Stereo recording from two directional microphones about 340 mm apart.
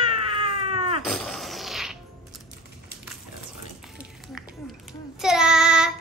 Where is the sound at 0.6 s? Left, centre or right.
Centre.